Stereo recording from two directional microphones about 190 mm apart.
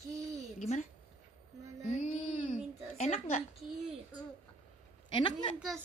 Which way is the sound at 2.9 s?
40° left (ahead or behind).